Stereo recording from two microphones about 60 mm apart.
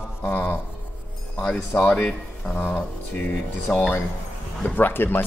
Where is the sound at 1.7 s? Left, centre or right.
Left.